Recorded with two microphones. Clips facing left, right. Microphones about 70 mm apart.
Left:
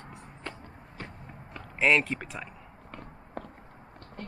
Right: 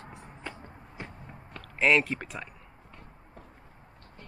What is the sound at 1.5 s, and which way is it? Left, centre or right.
Speech, centre.